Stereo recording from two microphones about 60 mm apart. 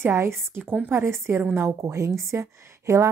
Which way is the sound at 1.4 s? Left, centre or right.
Right.